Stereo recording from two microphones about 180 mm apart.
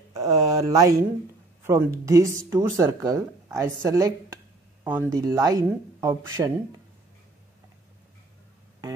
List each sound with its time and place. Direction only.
0.1 s speech: 20° right (ahead or behind)